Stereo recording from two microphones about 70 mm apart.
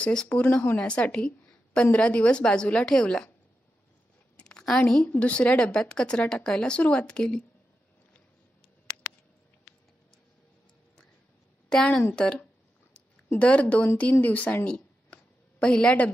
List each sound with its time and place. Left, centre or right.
0.0 s a woman's voice: centre
4.4 s a sound: centre
5.1 s a woman's voice: centre
12.2 s a woman's voice: centre